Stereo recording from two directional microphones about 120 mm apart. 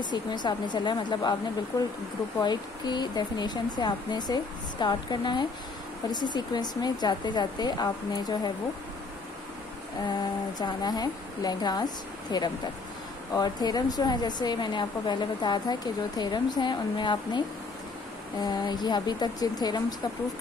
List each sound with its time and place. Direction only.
0.1 s a woman's voice: 35° left (ahead or behind)
2.4 s a woman's voice: 35° left (ahead or behind)
10.6 s a woman's voice: 35° left (ahead or behind)
18.4 s a woman's voice: 35° left (ahead or behind)